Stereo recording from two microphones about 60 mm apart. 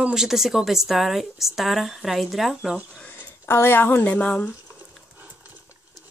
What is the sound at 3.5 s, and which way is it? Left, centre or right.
Speech, left.